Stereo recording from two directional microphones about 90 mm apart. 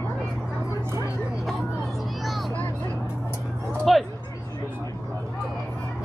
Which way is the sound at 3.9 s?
Centre (ahead or behind).